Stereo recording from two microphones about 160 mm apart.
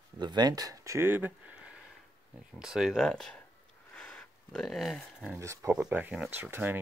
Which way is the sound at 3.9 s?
5° left (ahead or behind).